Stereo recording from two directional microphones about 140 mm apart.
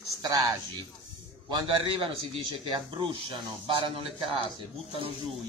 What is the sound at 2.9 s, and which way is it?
Speech, 35° right (ahead or behind).